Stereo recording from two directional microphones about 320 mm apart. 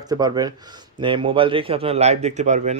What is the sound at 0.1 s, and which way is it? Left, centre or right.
A man's voice, centre.